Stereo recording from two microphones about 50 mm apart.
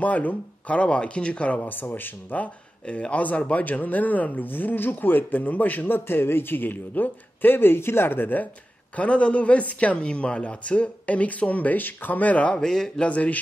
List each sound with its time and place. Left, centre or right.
0.0 s speech: left
1.6 s speech: left
2.4 s speech: left
8.9 s speech: left
12.5 s speech: centre
13.0 s speech: left